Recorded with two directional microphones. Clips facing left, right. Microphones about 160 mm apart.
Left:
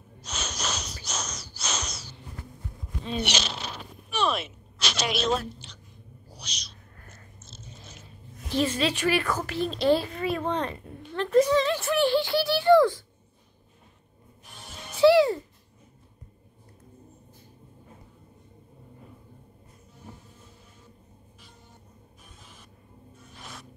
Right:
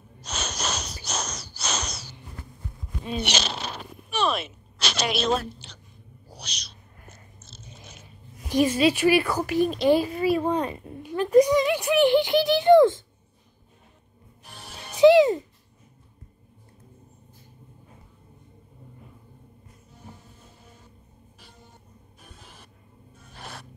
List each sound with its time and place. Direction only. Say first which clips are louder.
0.2 s snort: right 3 dB; 65° right (ahead or behind)
1.0 s a sound: right 3 dB; 70° right (ahead or behind)
1.6 s bird: right 3 dB; 65° right (ahead or behind)
3.3 s zipper: right 2 dB; 65° right (ahead or behind)
4.8 s a sound: right 2 dB; 60° right (ahead or behind)
6.3 s owl: right 2 dB; 65° right (ahead or behind)
8.5 s speech: right 5 dB; 10° right (ahead or behind)
15.0 s music: right 3 dB; 20° right (ahead or behind)
22.2 s a sound: right 4 dB; 65° right (ahead or behind)
23.3 s music: right 4 dB; 65° right (ahead or behind)